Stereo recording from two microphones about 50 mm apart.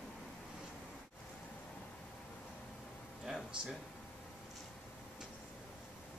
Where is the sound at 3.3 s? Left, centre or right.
Centre.